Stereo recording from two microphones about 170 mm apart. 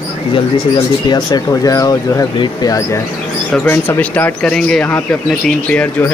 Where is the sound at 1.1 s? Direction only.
25° left (ahead or behind).